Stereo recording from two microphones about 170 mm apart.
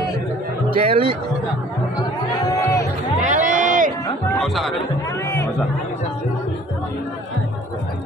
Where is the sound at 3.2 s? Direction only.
45° right (ahead or behind).